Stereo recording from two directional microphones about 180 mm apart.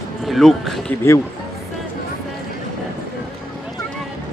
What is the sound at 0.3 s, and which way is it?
Speech, centre (ahead or behind).